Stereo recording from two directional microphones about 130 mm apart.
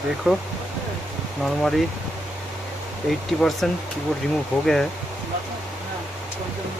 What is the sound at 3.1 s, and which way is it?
Speech, centre (ahead or behind).